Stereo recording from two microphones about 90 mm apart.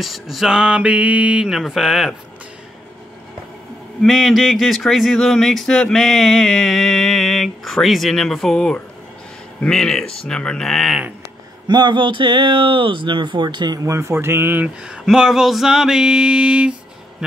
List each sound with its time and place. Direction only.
0.0 s speech: centre (ahead or behind)
4.0 s speech: centre (ahead or behind)
11.6 s speech: 55° right (ahead or behind)
13.7 s speech: 35° right (ahead or behind)
14.9 s a sound: 5° right (ahead or behind)